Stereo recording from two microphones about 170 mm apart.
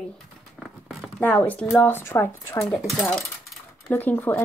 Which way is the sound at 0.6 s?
Centre (ahead or behind).